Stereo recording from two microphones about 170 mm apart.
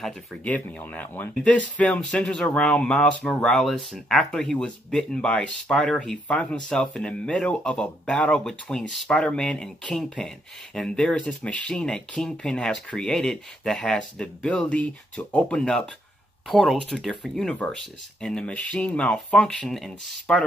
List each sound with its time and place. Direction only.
0.0 s speech: 10° left (ahead or behind)